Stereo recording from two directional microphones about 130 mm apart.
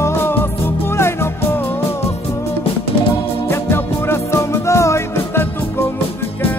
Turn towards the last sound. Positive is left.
turn(degrees=20)  # may be behind; listen again after turning